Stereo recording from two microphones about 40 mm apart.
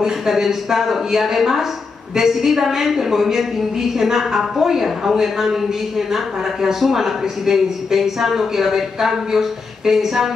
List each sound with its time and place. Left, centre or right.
0.0 s speech: centre